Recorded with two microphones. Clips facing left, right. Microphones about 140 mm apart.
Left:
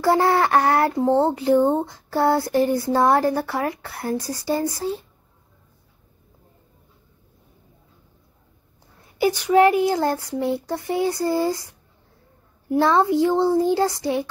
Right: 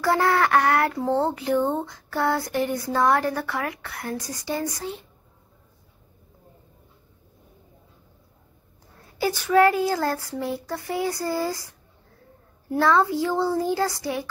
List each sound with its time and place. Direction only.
0.0 s speech: 25° left (ahead or behind)
9.2 s child singing: 15° left (ahead or behind)